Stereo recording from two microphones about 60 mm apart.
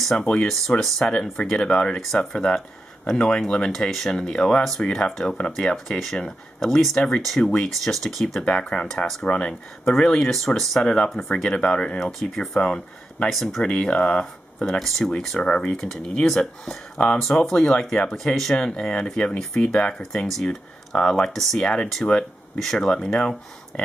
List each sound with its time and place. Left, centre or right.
0.0 s speech: centre
5.9 s speech: centre
8.5 s speech: centre
9.3 s speech: centre
10.8 s speech: centre
11.1 s speech: centre
12.0 s speech: centre
12.5 s speech: centre
13.3 s speech: centre
13.7 s speech: centre
14.8 s speech: centre